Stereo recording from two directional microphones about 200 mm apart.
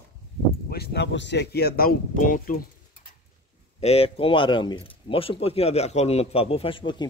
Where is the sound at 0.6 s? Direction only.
50° left (ahead or behind).